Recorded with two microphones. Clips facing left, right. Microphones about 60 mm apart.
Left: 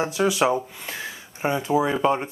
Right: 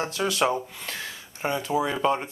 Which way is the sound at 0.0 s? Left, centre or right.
Centre.